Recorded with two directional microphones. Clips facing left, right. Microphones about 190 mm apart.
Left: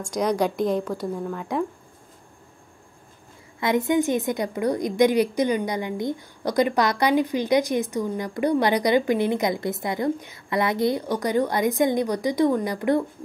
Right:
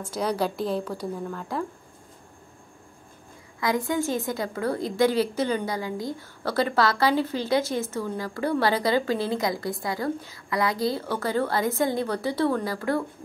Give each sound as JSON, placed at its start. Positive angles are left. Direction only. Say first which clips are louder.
{"t": 0.4, "sound": "a woman's voice", "louder": "left 4 dB", "side_deg": 15}
{"t": 3.5, "sound": "a woman's voice", "louder": "left 4 dB", "side_deg": 25}